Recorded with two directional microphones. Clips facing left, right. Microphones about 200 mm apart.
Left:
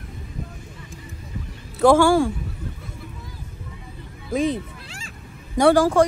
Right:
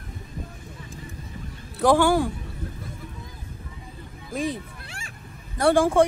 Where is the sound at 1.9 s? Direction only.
15° right (ahead or behind).